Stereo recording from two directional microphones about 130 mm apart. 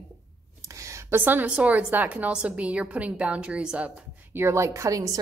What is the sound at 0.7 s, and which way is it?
A woman's voice, 25° right (ahead or behind).